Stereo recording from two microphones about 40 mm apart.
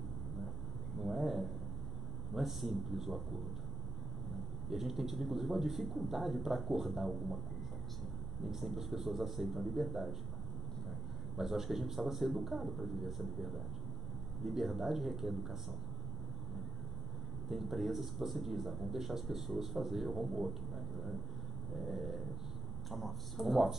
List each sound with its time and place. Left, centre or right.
1.0 s a sound: centre
2.3 s speech: centre
4.6 s a man's voice: centre
8.5 s a man's voice: centre
17.5 s a man's voice: centre